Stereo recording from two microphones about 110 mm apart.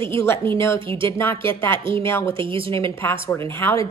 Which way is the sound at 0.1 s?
25° left (ahead or behind).